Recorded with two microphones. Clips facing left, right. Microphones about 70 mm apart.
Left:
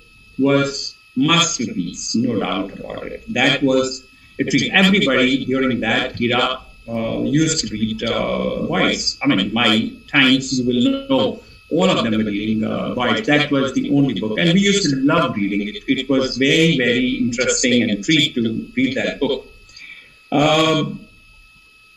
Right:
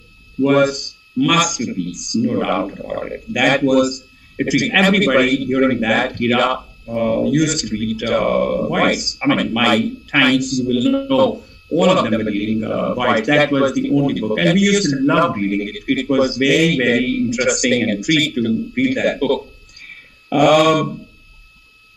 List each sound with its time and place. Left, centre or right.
0.4 s speech: centre